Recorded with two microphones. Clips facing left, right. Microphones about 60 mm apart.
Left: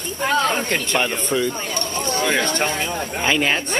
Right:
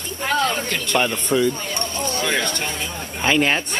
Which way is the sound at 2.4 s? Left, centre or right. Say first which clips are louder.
Left 4 dB; left.